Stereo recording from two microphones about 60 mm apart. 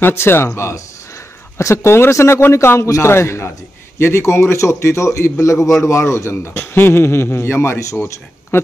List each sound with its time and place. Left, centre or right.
0.0 s a man's voice: left
6.5 s speech: left